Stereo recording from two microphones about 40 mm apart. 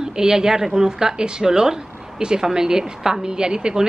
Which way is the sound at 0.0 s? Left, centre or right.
Centre.